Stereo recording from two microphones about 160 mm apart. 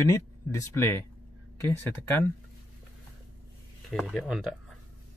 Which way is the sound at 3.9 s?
Centre (ahead or behind).